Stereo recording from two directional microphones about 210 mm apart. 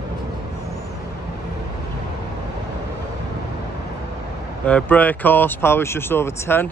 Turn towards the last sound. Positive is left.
turn(degrees=10)  # may be behind; listen again after turning